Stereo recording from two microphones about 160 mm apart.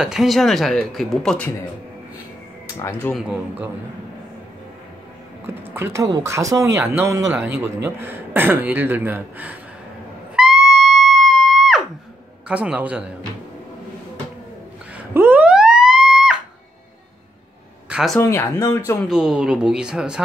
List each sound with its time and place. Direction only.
0.0 s speech: 5° right (ahead or behind)
2.6 s speech: 15° left (ahead or behind)
3.2 s speech: 10° right (ahead or behind)
5.5 s speech: 15° right (ahead or behind)
10.3 s music: 5° right (ahead or behind)
12.4 s speech: 10° right (ahead or behind)
15.0 s a sound: 10° right (ahead or behind)
17.8 s a sound: 5° right (ahead or behind)
18.2 s speech: 20° left (ahead or behind)
19.0 s speech: 5° right (ahead or behind)